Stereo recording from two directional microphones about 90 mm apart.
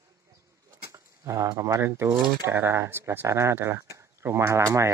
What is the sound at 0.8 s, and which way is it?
Speech, 35° right (ahead or behind).